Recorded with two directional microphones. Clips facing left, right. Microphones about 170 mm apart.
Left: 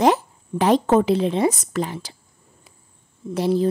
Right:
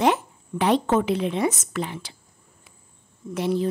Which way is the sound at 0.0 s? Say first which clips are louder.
Left 3 dB; 40° left (ahead or behind).